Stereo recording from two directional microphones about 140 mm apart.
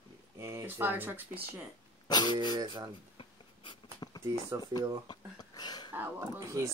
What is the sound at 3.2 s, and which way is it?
Writing, 30° left (ahead or behind).